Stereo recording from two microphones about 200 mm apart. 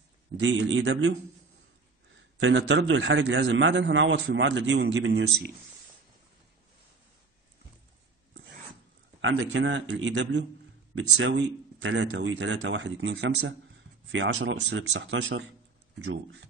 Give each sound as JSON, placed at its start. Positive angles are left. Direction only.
{"t": 0.4, "sound": "a man's voice", "side_deg": -70}
{"t": 2.1, "sound": "a man's voice", "side_deg": -65}
{"t": 9.2, "sound": "a man's voice", "side_deg": -70}